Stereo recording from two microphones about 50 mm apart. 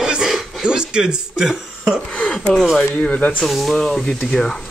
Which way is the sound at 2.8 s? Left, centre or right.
Left.